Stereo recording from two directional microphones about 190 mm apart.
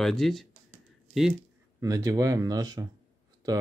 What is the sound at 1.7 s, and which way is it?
Speech, 20° right (ahead or behind).